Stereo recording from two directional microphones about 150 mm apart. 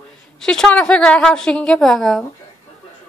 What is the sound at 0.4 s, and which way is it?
A woman's voice, 5° left (ahead or behind).